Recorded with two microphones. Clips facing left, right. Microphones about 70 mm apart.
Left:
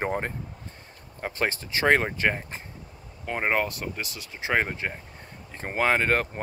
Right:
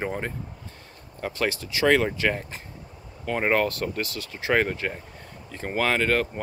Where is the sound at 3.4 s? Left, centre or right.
Centre.